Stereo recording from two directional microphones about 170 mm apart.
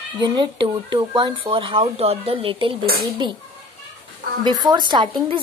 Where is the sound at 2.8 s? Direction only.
60° right (ahead or behind).